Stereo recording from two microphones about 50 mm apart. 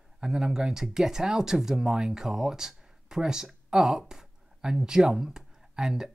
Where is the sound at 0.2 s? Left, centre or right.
Centre.